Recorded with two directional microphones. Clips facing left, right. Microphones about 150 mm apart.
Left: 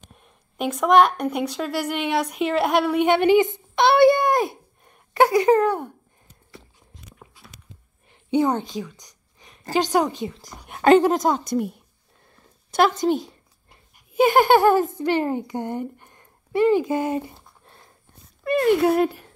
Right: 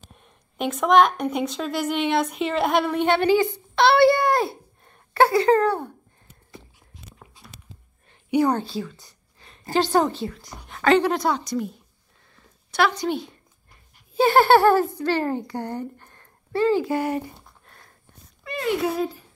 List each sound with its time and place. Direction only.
0.2 s a woman's voice: 5° left (ahead or behind)
8.1 s a sound: 20° left (ahead or behind)
8.5 s a woman's voice: 15° left (ahead or behind)
10.4 s speech: 45° left (ahead or behind)
12.7 s speech: 45° left (ahead or behind)
13.7 s a child's voice: 15° left (ahead or behind)
18.4 s speech: 55° left (ahead or behind)